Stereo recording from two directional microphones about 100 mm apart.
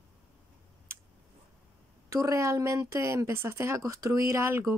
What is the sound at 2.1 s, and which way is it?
Speech, 35° right (ahead or behind).